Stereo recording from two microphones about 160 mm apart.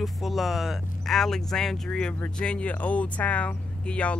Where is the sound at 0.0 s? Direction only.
Centre (ahead or behind).